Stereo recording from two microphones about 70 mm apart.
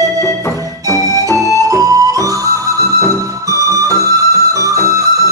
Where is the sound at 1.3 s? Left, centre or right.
Right.